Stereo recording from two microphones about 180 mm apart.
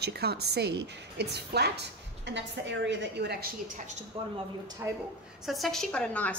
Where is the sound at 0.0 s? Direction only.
65° right (ahead or behind).